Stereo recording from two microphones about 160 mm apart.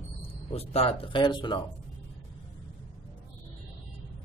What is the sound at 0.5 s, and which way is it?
A man's voice, 40° left (ahead or behind).